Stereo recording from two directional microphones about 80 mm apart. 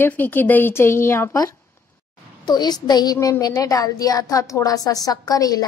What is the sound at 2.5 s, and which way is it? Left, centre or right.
Speech, left.